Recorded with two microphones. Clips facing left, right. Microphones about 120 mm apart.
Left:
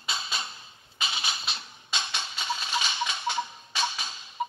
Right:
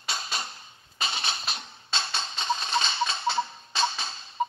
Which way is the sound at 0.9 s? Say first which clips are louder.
Right 2 dB; 35° right (ahead or behind).